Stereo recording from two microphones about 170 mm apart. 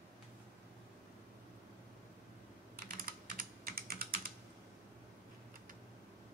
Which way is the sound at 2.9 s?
55° right (ahead or behind).